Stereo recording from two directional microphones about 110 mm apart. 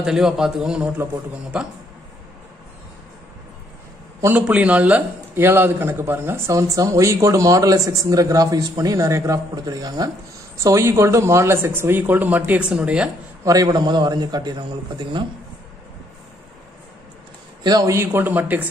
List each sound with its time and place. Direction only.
0.0 s a man's voice: 5° right (ahead or behind)
4.4 s speech: 10° right (ahead or behind)
13.4 s a man's voice: 35° right (ahead or behind)
17.6 s a man's voice: 35° right (ahead or behind)
17.9 s a man's voice: 20° right (ahead or behind)